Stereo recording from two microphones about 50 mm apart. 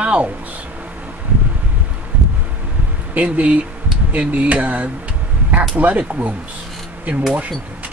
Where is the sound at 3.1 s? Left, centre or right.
Right.